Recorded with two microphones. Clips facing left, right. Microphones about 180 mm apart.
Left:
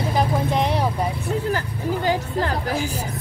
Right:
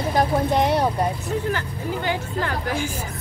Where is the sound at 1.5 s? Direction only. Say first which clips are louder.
Left 3 dB; 35° left (ahead or behind).